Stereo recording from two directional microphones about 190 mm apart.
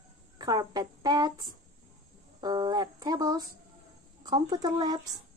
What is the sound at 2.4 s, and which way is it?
A woman's voice, 20° right (ahead or behind).